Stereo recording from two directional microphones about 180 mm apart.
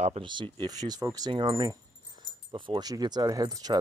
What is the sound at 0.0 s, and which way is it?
Speech, 30° right (ahead or behind).